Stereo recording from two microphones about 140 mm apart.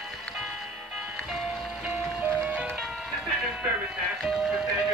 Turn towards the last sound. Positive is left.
turn(degrees=-5)  # may be behind; listen again after turning